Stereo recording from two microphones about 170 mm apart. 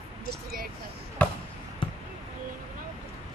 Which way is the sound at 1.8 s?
30° left (ahead or behind).